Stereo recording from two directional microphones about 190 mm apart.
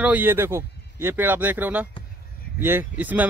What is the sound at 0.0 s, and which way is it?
Speech, 10° right (ahead or behind).